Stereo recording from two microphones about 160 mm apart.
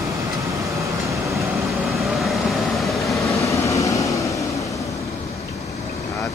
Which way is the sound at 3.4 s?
20° left (ahead or behind).